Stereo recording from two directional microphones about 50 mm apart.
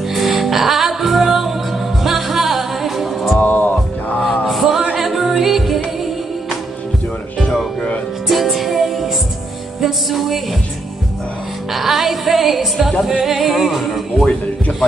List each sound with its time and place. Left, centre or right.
0.1 s music: centre
3.3 s music: left
4.5 s music: centre
8.3 s music: centre
11.7 s music: centre